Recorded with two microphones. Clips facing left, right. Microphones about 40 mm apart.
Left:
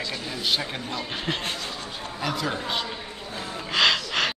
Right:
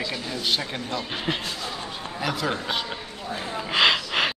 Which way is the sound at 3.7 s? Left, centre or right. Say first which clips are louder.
Right 1 dB; centre.